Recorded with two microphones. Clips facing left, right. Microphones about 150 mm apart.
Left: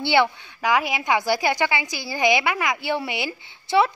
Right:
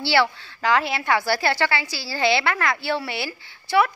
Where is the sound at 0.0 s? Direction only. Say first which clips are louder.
Left 1 dB; 20° left (ahead or behind).